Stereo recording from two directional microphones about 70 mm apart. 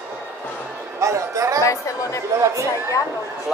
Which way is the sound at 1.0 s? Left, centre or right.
Right.